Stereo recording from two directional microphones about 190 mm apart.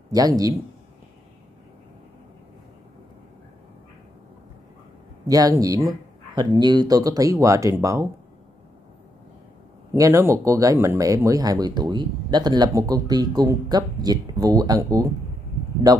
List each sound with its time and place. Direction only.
0.1 s speech: 20° right (ahead or behind)
5.2 s speech: 20° right (ahead or behind)
9.9 s speech: 15° right (ahead or behind)